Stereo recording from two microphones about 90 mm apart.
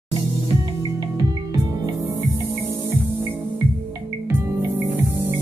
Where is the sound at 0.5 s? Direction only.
45° right (ahead or behind).